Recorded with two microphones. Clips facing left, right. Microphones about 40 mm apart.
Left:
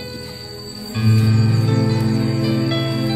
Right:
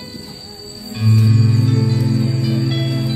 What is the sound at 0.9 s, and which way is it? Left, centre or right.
Music, centre.